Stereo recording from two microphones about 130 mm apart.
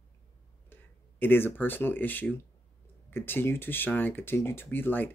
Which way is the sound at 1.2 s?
15° left (ahead or behind).